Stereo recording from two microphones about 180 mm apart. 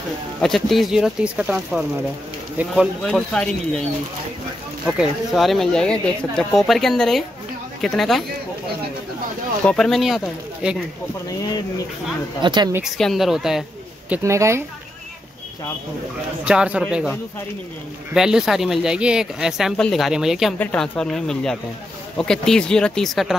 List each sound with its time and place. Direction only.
0.4 s speech: centre (ahead or behind)
4.8 s speech: centre (ahead or behind)
9.7 s speech: 5° left (ahead or behind)
11.2 s speech: 20° left (ahead or behind)
12.4 s speech: 25° right (ahead or behind)
12.7 s speech: centre (ahead or behind)
16.4 s speech: 5° right (ahead or behind)
18.1 s speech: 5° right (ahead or behind)